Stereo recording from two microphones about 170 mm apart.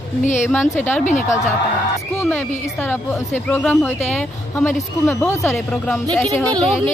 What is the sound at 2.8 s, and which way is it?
A woman's voice, 10° left (ahead or behind).